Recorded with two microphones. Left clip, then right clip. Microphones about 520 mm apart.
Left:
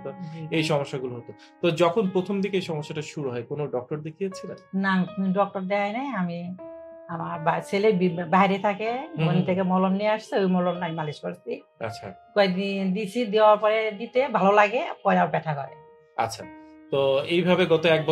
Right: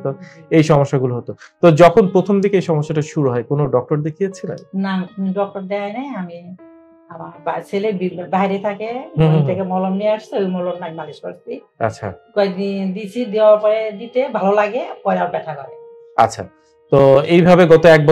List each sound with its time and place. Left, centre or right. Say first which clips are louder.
0.0 s speech: right 11 dB; right
4.7 s speech: left 1 dB; left
7.4 s speech: right 2 dB; left
12.4 s speech: right 5 dB; left
16.2 s speech: right 13 dB; right